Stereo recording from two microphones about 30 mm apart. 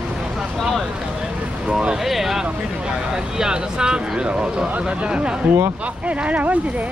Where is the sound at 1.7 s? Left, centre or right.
Right.